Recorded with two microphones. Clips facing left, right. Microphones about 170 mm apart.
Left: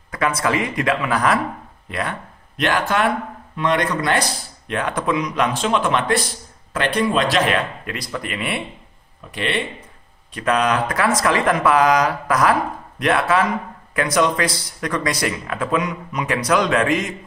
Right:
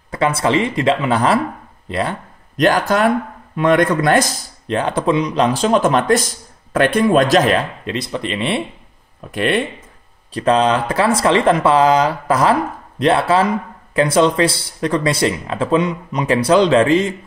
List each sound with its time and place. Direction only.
0.1 s speech: 30° right (ahead or behind)
3.5 s a man's voice: 50° right (ahead or behind)
4.6 s speech: 30° right (ahead or behind)
7.8 s speech: 25° right (ahead or behind)
9.3 s a man's voice: 50° right (ahead or behind)
10.3 s speech: 30° right (ahead or behind)